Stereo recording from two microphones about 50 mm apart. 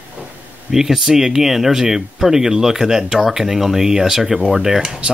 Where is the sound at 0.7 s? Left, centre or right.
Centre.